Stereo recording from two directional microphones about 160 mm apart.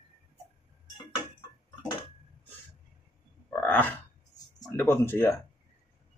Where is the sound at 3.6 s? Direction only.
10° left (ahead or behind).